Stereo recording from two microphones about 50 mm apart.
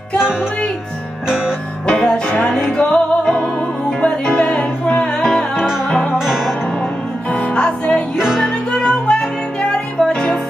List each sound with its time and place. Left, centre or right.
0.2 s music: centre
1.9 s music: centre
5.1 s music: centre
6.1 s music: centre
7.2 s music: left